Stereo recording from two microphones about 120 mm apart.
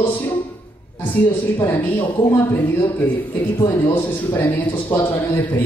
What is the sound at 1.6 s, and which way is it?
A man's voice, 15° left (ahead or behind).